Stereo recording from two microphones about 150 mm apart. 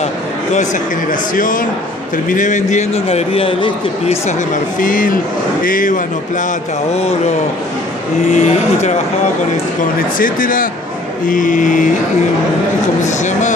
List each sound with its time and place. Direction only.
1.3 s a man's voice: 65° left (ahead or behind); by 4.4 s 40° left (ahead or behind)
4.7 s a man's voice: 65° left (ahead or behind)
8.3 s a man's voice: 50° left (ahead or behind)
10.1 s a man's voice: 65° left (ahead or behind)
13.0 s a man's voice: 55° left (ahead or behind)